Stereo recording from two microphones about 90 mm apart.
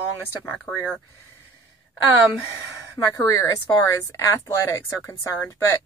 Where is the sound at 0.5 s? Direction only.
15° left (ahead or behind).